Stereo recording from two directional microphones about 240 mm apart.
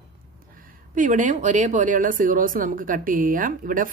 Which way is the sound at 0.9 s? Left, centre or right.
Right.